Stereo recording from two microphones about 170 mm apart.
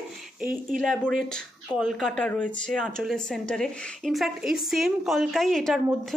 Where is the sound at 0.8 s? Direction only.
5° left (ahead or behind).